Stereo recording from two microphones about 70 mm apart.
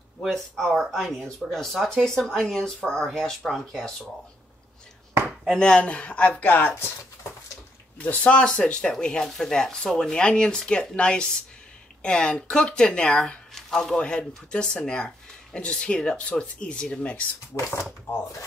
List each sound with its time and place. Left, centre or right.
0.2 s speech: centre
3.1 s speech: centre
5.5 s speech: centre
8.0 s speech: centre
17.5 s speech: left